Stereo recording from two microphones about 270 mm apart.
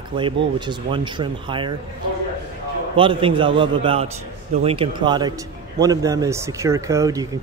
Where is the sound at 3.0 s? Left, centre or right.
Centre.